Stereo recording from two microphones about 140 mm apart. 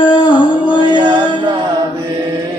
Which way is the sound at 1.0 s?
30° right (ahead or behind).